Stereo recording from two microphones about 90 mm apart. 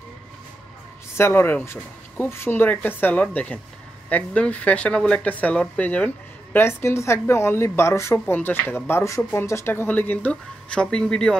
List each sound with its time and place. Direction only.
1.1 s speech: 25° left (ahead or behind); by 11.3 s 10° left (ahead or behind)